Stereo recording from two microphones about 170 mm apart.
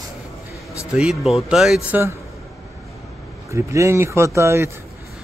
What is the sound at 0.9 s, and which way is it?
Speech, centre (ahead or behind).